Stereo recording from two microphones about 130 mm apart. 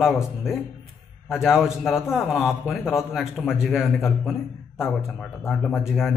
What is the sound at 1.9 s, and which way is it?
Speech, 20° left (ahead or behind).